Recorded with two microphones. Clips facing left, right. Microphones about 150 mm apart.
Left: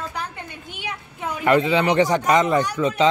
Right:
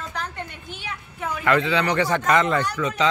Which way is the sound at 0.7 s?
20° left (ahead or behind).